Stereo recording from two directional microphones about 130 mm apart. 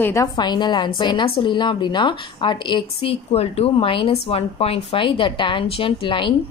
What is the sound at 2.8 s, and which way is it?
Speech, 50° left (ahead or behind).